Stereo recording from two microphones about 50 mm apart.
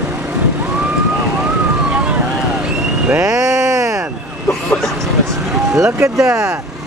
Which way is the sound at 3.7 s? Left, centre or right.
Right.